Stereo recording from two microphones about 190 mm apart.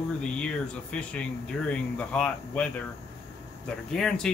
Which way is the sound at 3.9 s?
5° left (ahead or behind).